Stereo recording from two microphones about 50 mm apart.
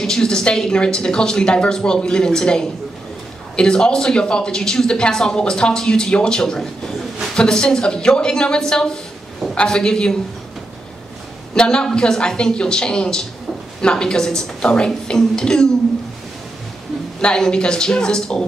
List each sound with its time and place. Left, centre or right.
0.0 s speech: centre
11.5 s speech: centre
17.2 s speech: centre